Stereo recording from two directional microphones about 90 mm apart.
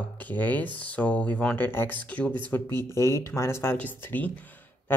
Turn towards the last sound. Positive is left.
turn(degrees=20)  # may be behind; listen again after turning